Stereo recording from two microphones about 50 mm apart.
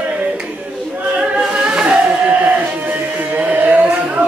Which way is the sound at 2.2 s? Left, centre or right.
Right.